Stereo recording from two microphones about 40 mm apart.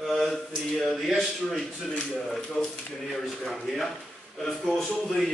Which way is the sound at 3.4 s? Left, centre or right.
Centre.